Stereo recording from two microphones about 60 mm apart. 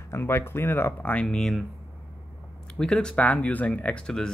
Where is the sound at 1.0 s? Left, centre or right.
Left.